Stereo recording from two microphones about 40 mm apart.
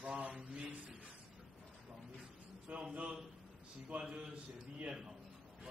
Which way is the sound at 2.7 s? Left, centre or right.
Right.